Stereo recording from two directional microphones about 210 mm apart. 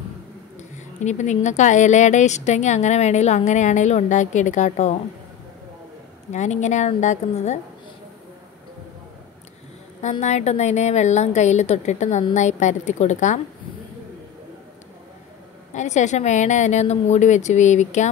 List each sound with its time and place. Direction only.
0.6 s speech: 35° left (ahead or behind)
6.3 s speech: 35° left (ahead or behind)
10.2 s speech: 30° left (ahead or behind)
15.7 s speech: 35° left (ahead or behind)